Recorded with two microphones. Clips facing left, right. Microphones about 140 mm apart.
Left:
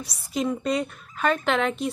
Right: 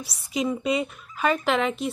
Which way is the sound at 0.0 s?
Centre (ahead or behind).